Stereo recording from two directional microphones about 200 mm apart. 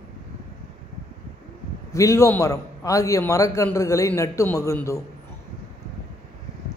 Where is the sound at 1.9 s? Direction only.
15° left (ahead or behind).